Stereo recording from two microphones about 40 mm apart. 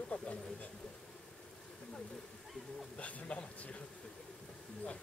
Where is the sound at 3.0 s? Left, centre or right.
Left.